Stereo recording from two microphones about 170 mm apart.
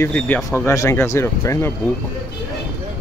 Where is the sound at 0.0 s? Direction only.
10° left (ahead or behind).